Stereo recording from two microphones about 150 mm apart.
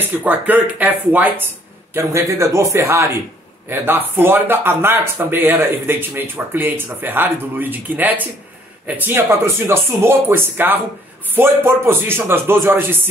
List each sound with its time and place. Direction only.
0.0 s speech: 10° right (ahead or behind)